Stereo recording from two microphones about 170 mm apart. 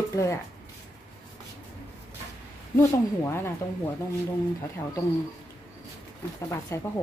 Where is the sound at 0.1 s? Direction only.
15° left (ahead or behind).